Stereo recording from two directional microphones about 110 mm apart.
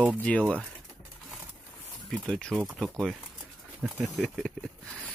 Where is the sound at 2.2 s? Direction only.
5° left (ahead or behind).